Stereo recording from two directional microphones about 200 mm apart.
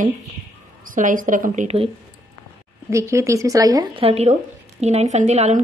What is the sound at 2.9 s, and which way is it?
Speech, 15° right (ahead or behind).